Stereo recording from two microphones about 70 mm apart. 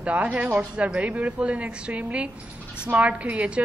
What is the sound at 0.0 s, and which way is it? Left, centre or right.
A woman's voice, right.